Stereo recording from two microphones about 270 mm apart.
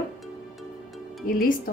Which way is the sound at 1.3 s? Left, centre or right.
Left.